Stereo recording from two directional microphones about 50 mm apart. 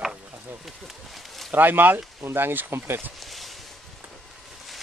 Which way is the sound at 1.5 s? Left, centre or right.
Right.